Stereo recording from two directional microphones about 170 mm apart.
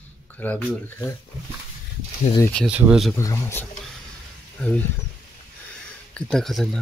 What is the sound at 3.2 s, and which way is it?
Speech, 15° left (ahead or behind).